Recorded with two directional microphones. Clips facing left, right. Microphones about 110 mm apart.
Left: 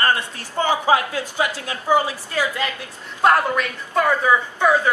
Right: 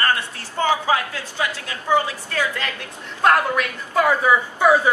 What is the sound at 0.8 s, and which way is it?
A woman's voice, 20° left (ahead or behind).